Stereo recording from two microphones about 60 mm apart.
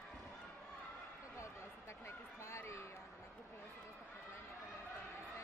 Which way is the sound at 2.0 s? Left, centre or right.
Left.